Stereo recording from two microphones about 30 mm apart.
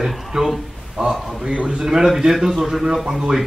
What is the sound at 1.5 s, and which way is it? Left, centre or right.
Speech, right.